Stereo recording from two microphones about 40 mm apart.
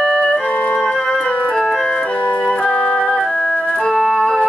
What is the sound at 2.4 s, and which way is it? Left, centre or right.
Music, left.